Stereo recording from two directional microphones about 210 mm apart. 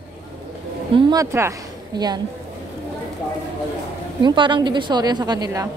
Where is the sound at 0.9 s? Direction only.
15° right (ahead or behind).